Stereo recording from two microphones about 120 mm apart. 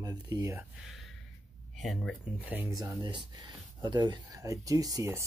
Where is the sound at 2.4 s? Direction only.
15° right (ahead or behind).